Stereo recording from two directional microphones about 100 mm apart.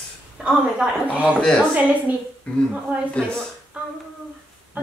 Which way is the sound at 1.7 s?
15° right (ahead or behind).